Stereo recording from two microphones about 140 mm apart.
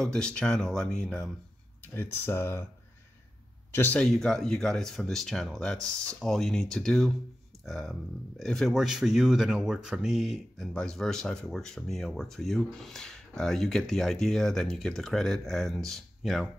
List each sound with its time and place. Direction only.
0.0 s speech: 5° left (ahead or behind)
2.0 s speech: 15° left (ahead or behind)
3.7 s speech: 10° left (ahead or behind)